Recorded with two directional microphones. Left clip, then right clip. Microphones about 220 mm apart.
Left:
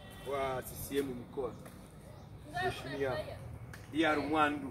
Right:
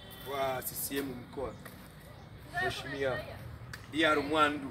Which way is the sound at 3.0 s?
40° right (ahead or behind).